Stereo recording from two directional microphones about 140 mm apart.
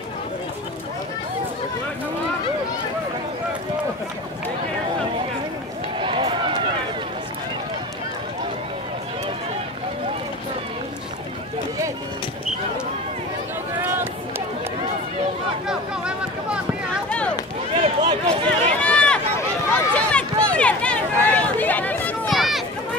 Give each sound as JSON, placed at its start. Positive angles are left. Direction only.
{"t": 5.9, "sound": "run", "side_deg": -40}
{"t": 17.7, "sound": "run", "side_deg": -45}
{"t": 18.3, "sound": "run", "side_deg": 10}
{"t": 22.3, "sound": "run", "side_deg": 0}